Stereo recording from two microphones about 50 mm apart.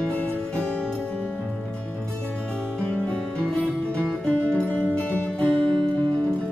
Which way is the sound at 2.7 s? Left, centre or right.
Centre.